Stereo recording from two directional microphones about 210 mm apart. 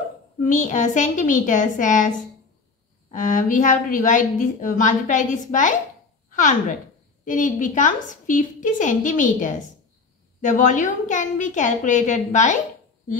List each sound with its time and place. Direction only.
0.4 s a woman's voice: 35° left (ahead or behind)